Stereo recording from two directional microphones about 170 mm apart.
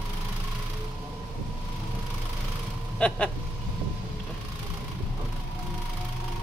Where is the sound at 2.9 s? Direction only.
5° left (ahead or behind).